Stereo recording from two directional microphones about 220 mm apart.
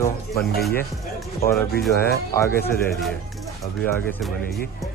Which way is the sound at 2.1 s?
45° left (ahead or behind).